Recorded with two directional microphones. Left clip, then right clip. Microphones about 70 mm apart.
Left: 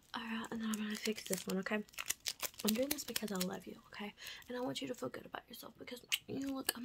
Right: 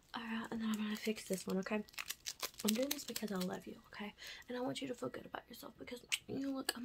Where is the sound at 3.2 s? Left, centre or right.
Left.